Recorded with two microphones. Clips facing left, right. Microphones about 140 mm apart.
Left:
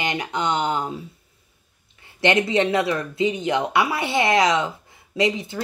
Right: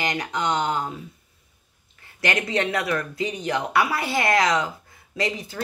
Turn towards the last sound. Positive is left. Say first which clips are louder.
# left 5 dB
turn(degrees=25)  # may be behind; listen again after turning